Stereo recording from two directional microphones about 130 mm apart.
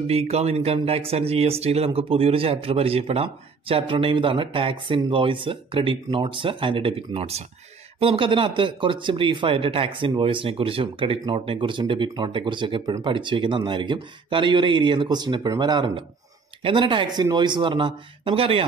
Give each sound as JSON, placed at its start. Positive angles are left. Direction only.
{"t": 0.0, "sound": "speech", "side_deg": -50}